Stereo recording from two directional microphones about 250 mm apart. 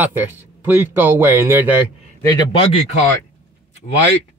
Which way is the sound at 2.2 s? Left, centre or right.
Centre.